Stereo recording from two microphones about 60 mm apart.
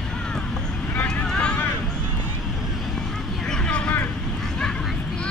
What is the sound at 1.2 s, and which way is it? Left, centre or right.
Vehicle, centre.